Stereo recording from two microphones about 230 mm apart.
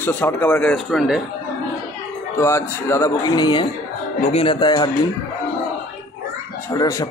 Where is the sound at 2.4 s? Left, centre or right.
Centre.